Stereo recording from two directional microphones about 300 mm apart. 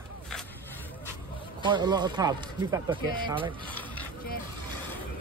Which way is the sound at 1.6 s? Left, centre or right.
Centre.